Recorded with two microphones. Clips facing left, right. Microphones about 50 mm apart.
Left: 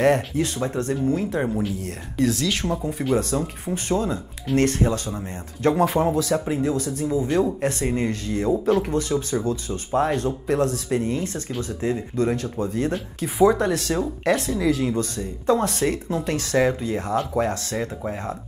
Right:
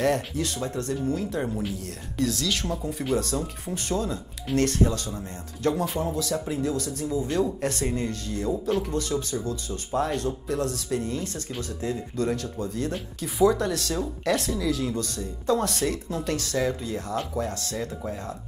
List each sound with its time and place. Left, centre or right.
0.0 s speech: left
5.8 s speech: left
6.1 s speech: left; by 14.6 s centre
14.6 s speech: left
16.5 s speech: left